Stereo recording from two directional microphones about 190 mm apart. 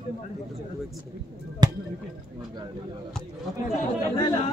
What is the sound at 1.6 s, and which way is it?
Speech, 20° right (ahead or behind).